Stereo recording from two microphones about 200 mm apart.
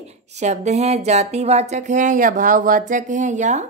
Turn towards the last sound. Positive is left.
turn(degrees=-35)  # may be behind; listen again after turning